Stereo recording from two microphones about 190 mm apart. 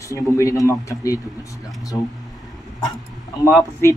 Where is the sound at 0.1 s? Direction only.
15° left (ahead or behind).